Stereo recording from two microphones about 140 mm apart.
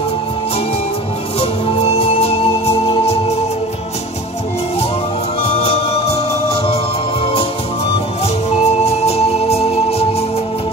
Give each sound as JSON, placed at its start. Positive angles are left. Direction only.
{"t": 1.4, "sound": "music", "side_deg": 45}
{"t": 5.5, "sound": "music", "side_deg": 45}
{"t": 8.5, "sound": "music", "side_deg": 50}